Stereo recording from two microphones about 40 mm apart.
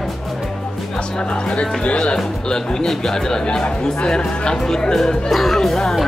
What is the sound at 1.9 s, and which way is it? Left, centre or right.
Speech, centre.